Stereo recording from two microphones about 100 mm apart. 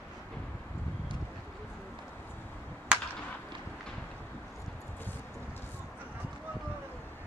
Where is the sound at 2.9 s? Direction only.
10° right (ahead or behind).